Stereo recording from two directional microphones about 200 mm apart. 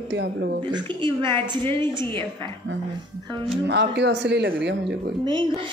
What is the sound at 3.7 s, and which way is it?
Speech, 60° right (ahead or behind).